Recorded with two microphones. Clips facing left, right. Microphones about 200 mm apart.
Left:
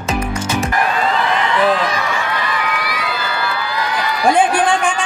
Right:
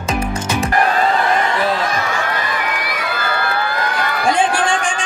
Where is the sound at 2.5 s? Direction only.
50° right (ahead or behind).